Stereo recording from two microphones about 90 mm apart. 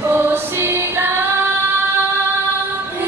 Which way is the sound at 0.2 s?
25° right (ahead or behind).